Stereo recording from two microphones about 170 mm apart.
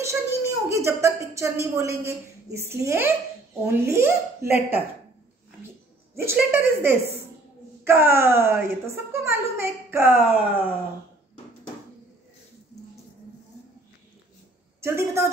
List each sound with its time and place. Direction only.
0.0 s a woman's voice: 15° right (ahead or behind)
6.1 s a woman's voice: 15° right (ahead or behind)
14.8 s a woman's voice: 15° right (ahead or behind)